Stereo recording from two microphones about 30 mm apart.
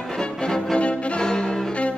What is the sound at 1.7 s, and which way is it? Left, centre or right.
Music, left.